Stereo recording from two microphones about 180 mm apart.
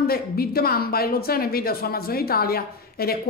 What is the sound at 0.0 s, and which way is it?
A woman's voice, 55° left (ahead or behind).